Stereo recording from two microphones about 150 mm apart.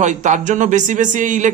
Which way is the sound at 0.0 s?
55° right (ahead or behind).